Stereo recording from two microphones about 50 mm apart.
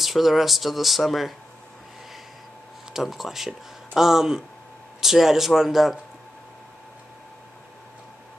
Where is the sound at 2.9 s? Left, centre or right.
Centre.